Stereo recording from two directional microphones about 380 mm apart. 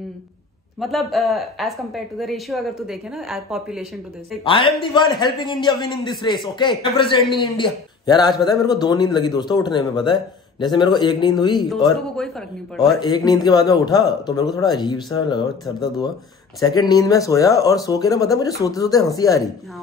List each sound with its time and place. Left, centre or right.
0.7 s a woman's voice: centre
4.5 s a man's voice: centre
11.8 s a woman's voice: centre
13.0 s a man's voice: centre